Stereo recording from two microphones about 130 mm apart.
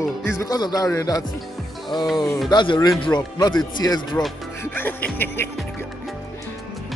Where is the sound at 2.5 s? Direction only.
35° left (ahead or behind).